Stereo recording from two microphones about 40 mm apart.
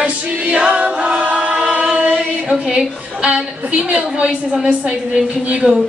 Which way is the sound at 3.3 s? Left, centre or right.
Right.